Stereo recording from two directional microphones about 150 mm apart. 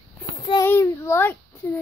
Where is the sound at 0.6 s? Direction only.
20° left (ahead or behind).